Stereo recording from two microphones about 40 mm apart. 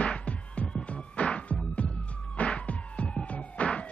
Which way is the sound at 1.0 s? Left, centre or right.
Left.